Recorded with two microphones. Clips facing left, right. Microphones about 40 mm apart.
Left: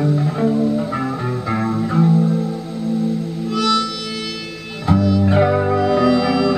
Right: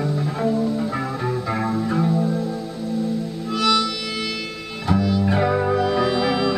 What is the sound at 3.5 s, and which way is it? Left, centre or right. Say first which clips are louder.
Harmonica: left 1 dB; centre.